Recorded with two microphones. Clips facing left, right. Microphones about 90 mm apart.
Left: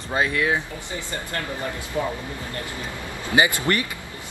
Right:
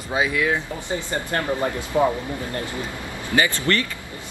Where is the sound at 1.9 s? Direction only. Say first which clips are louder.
Right 7 dB; 40° right (ahead or behind).